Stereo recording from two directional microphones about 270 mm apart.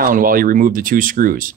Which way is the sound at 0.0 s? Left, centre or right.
Right.